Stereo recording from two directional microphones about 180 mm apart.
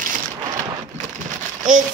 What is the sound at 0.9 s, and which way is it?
Crumpling, 45° right (ahead or behind).